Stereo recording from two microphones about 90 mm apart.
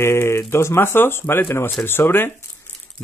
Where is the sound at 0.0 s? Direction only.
30° left (ahead or behind).